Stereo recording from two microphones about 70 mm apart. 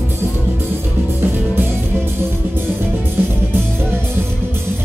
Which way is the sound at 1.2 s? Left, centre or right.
Right.